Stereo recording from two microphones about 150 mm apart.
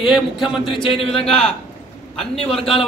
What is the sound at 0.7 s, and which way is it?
Speech, 35° left (ahead or behind).